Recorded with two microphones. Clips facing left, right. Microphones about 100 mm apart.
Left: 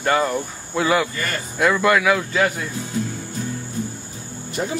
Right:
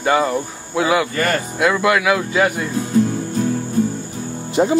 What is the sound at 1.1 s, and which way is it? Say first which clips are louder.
Speech: right 8 dB; 65° right (ahead or behind).